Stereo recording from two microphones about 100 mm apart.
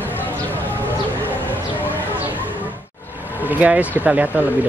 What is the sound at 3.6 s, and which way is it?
Speech, 15° right (ahead or behind).